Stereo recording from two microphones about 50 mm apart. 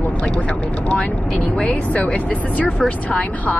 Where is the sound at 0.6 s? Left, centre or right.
Left.